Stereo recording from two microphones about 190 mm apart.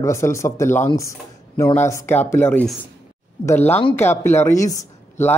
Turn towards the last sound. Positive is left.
turn(degrees=15)  # may be behind; listen again after turning